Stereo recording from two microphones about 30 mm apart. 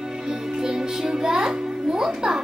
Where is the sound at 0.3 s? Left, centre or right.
Right.